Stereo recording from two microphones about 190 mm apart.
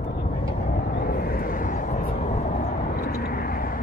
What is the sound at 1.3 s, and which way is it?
Vehicle, 45° left (ahead or behind).